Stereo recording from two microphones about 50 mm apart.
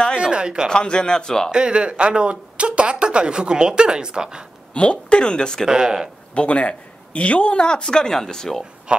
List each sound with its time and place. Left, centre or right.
0.2 s a sound: centre
0.7 s speech: centre
1.5 s speech: right
4.7 s speech: left
5.7 s speech: centre
6.3 s speech: left